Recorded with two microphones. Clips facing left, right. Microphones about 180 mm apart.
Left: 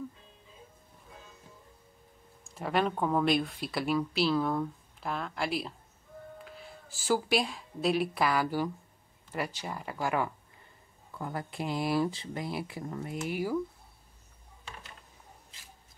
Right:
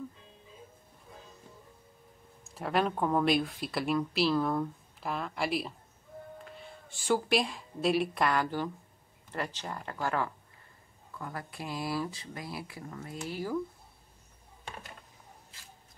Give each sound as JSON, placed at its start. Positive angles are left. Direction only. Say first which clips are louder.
{"t": 2.5, "sound": "speech", "louder": "even", "side_deg": 0}
{"t": 11.1, "sound": "speech", "louder": "left 4 dB", "side_deg": 25}